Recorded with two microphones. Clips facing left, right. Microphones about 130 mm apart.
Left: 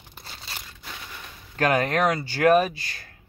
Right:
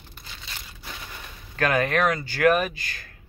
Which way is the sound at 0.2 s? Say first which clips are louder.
Left 2 dB; 35° left (ahead or behind).